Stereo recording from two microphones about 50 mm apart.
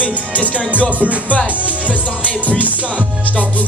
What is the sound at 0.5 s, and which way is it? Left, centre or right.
Music, left.